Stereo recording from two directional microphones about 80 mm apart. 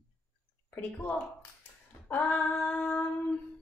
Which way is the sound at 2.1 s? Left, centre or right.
Left.